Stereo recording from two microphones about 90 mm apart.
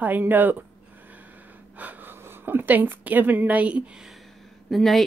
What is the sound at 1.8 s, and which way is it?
Speech, 20° right (ahead or behind).